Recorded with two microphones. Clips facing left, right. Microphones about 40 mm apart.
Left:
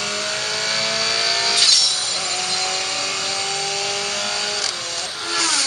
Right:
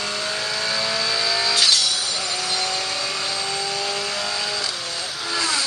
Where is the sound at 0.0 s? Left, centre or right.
Centre.